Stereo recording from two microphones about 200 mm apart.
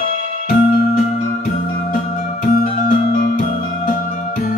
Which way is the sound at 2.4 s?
40° left (ahead or behind).